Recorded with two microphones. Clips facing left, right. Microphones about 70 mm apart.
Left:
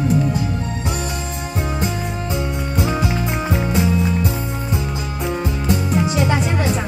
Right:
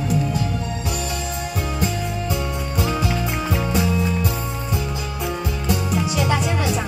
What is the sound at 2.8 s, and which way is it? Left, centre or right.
Music, left.